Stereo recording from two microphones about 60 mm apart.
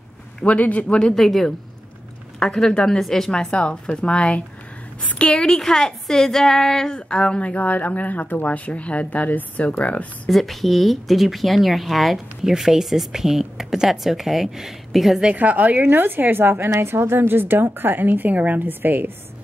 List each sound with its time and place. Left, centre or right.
0.6 s a woman's voice: left
0.9 s speech: centre
3.3 s a woman's voice: centre
10.3 s speech: centre
15.2 s a woman's voice: right